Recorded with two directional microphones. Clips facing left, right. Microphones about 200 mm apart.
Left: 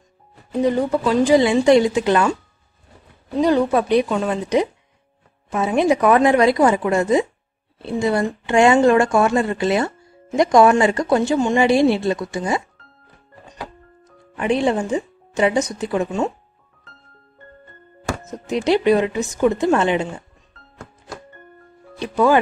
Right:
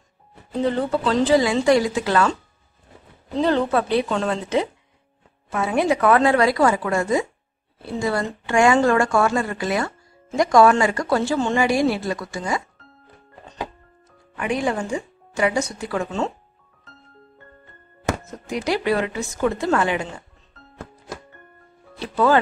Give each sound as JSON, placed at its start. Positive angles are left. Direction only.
{"t": 0.5, "sound": "speech", "side_deg": 15}
{"t": 1.4, "sound": "a woman's voice", "side_deg": 25}
{"t": 3.3, "sound": "a woman's voice", "side_deg": 10}
{"t": 14.0, "sound": "speech", "side_deg": 25}
{"t": 18.3, "sound": "a woman's voice", "side_deg": 20}
{"t": 21.9, "sound": "speech", "side_deg": 15}